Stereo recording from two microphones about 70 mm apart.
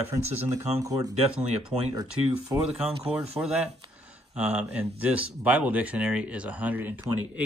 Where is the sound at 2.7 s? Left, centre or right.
Centre.